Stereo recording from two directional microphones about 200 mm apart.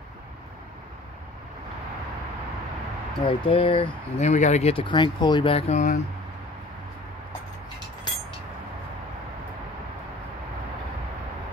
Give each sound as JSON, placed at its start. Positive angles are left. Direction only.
{"t": 3.3, "sound": "speech", "side_deg": 25}